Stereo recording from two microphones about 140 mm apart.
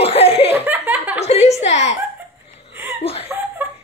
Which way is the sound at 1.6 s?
55° left (ahead or behind).